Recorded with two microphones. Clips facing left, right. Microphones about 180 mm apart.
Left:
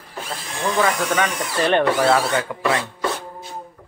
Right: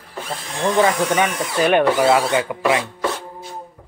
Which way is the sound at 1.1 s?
15° right (ahead or behind).